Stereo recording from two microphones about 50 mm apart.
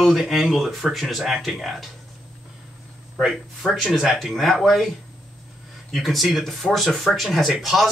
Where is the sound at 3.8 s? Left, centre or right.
Centre.